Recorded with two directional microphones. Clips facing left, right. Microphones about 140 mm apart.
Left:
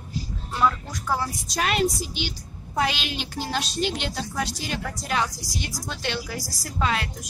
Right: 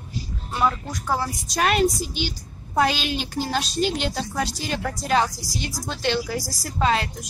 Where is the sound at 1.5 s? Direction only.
45° right (ahead or behind).